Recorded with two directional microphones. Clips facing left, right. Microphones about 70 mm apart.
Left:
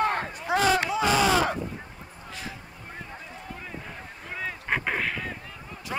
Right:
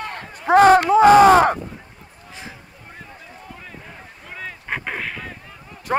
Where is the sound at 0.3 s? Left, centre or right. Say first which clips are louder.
Right 12 dB; right.